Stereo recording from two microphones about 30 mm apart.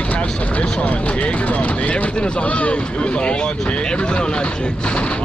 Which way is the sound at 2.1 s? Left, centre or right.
Left.